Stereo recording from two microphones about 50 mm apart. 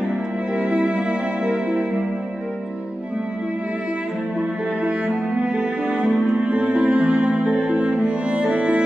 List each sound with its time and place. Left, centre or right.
0.6 s music: centre
4.8 s music: right